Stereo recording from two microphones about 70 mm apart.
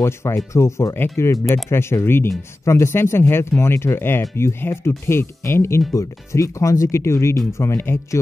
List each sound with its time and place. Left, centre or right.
0.0 s speech: left
5.9 s speech: left